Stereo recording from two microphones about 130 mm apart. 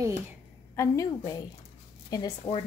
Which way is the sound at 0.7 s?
25° left (ahead or behind).